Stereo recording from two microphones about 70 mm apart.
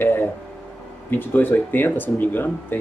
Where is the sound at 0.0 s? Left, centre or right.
Left.